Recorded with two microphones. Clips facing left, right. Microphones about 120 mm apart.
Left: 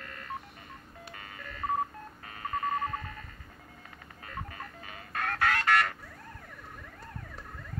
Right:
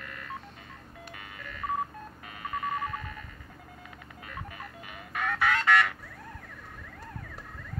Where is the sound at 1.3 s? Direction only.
35° left (ahead or behind).